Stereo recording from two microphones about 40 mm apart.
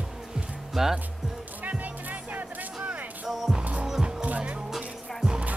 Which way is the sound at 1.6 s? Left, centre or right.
Right.